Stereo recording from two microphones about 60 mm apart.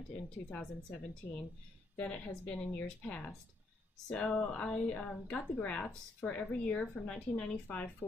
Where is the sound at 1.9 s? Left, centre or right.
Left.